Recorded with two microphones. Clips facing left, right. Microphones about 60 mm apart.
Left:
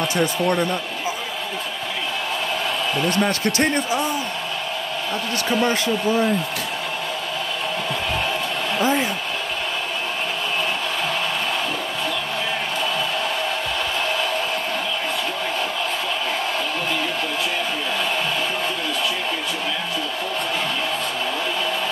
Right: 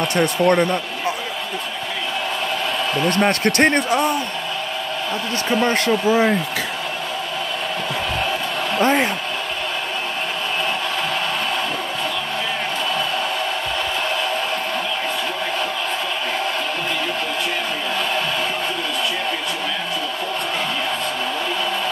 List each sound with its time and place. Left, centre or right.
0.1 s speech: right
3.1 s speech: right
5.7 s speech: right
8.7 s speech: right